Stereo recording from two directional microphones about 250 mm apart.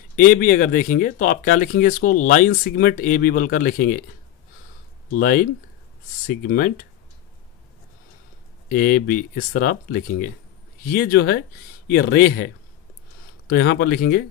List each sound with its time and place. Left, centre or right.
0.1 s speech: left
5.1 s speech: left
8.6 s speech: left